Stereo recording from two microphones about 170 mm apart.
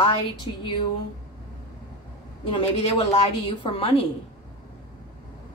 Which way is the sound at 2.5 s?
30° left (ahead or behind).